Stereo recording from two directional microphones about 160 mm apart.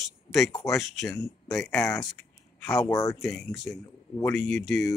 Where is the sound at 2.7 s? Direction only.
20° left (ahead or behind).